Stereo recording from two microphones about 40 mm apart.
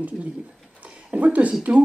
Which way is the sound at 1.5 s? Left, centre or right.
Right.